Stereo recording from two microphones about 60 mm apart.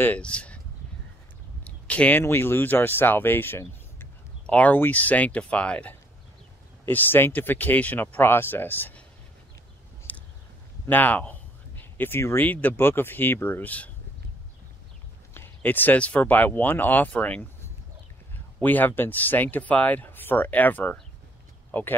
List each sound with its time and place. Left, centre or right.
0.2 s speech: left
1.6 s a sound: left
2.2 s speech: left
4.5 s speech: left
6.9 s speech: left
10.9 s speech: left
12.0 s speech: left
12.4 s speech: left
15.3 s speech: left
18.6 s speech: left
21.7 s speech: left